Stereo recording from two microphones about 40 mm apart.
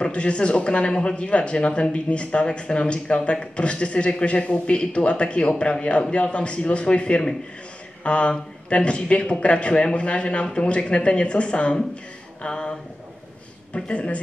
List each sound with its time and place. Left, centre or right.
0.0 s speech: left
13.7 s speech: left